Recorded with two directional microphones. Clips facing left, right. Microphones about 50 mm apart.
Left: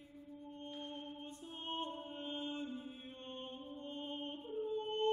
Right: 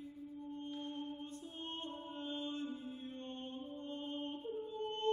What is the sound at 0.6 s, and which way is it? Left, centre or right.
Music, left.